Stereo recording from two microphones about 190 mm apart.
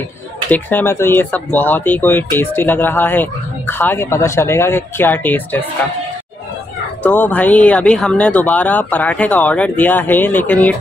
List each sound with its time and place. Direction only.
0.5 s speech: 10° left (ahead or behind)
7.0 s speech: 10° left (ahead or behind)